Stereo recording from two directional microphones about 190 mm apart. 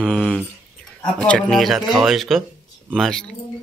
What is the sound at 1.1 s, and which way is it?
Speech, 5° left (ahead or behind).